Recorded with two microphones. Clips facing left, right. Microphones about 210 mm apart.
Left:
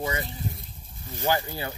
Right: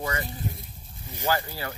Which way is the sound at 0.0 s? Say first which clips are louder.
Left 1 dB; 10° left (ahead or behind).